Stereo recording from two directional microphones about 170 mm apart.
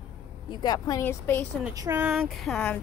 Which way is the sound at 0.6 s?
25° left (ahead or behind).